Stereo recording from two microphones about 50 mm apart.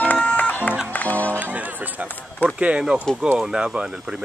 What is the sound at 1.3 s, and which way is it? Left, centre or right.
Music, right.